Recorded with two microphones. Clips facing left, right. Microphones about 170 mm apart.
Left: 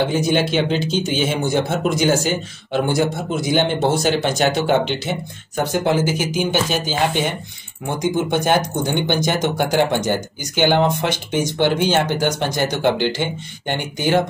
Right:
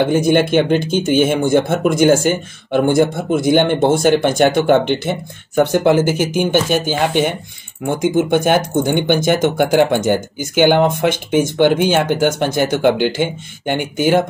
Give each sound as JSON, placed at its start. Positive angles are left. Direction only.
{"t": 0.0, "sound": "speech", "side_deg": -55}